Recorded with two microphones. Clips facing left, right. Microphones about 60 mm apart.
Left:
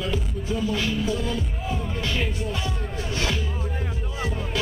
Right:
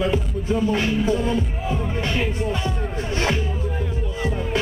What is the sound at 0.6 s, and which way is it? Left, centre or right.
Music, right.